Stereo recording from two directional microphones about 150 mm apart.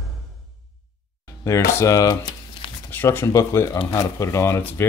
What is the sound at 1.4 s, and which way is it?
Speech, 20° left (ahead or behind).